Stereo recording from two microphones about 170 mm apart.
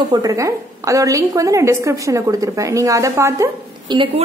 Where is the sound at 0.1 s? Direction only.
20° right (ahead or behind).